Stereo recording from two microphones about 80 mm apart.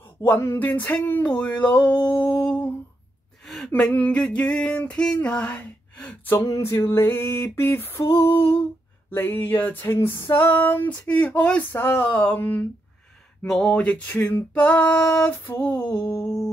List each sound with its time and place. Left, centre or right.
0.0 s music: left
1.3 s gasp: centre
2.0 s a sound: left
3.4 s a sound: centre
3.9 s music: left
4.2 s gasp: centre
6.7 s female singing: left
9.1 s music: left
11.7 s music: left
13.5 s music: centre
15.0 s female singing: left
15.2 s music: left